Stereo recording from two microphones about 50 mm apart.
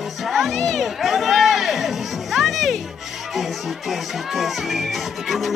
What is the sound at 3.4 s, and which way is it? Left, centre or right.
Speech, centre.